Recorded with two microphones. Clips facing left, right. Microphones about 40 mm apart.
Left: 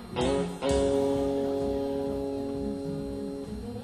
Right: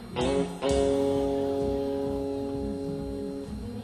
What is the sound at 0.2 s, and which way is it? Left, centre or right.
Music, centre.